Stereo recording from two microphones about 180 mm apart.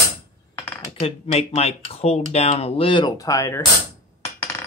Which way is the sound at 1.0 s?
35° left (ahead or behind).